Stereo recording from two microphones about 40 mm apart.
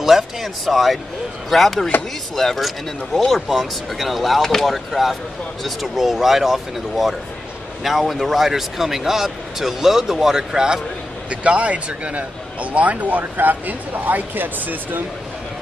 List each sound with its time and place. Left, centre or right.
0.0 s speech: centre
11.2 s a man's voice: right
13.2 s speech: right